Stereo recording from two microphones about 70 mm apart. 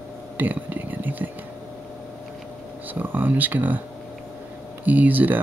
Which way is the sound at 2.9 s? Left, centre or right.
Right.